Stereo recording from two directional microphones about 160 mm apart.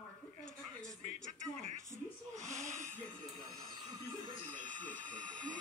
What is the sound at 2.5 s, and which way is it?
Wheeze, 50° right (ahead or behind).